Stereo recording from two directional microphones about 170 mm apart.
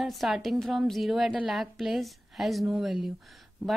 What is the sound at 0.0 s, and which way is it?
A woman's voice, centre (ahead or behind).